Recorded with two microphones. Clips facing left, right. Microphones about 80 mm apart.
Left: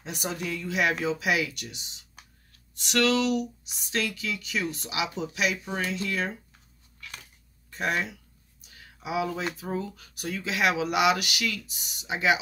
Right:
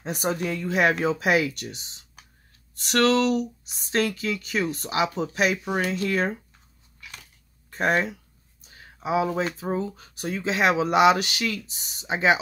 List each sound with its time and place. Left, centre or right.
0.0 s speech: right
7.7 s a sound: right
9.6 s speech: right